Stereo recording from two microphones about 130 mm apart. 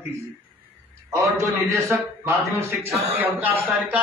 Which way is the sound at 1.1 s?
25° right (ahead or behind).